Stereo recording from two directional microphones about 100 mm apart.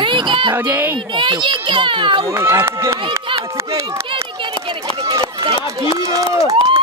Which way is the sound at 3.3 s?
55° right (ahead or behind).